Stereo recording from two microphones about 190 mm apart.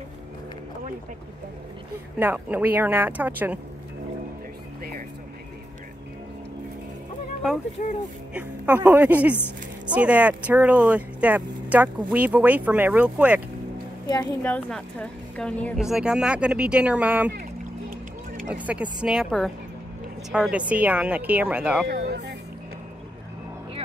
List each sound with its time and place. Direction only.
2.1 s speech: 10° right (ahead or behind)
7.8 s speech: 45° left (ahead or behind)
8.3 s speech: 10° right (ahead or behind)
14.4 s a woman's voice: 5° left (ahead or behind)
18.5 s a woman's voice: 5° right (ahead or behind)
21.8 s speech: 60° right (ahead or behind)